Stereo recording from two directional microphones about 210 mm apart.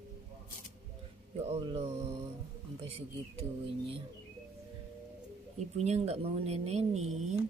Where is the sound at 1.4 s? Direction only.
25° right (ahead or behind).